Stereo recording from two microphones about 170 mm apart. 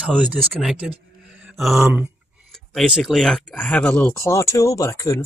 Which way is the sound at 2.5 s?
Centre (ahead or behind).